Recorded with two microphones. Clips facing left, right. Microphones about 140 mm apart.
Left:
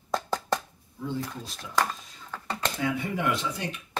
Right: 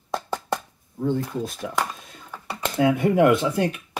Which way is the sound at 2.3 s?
10° right (ahead or behind).